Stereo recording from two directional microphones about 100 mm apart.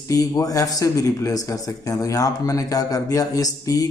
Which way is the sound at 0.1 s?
35° left (ahead or behind).